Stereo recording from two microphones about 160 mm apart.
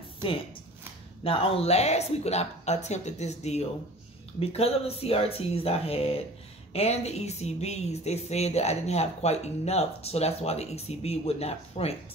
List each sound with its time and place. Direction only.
1.2 s speech: 40° left (ahead or behind)